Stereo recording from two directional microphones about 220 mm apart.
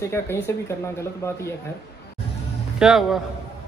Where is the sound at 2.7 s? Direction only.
Centre (ahead or behind).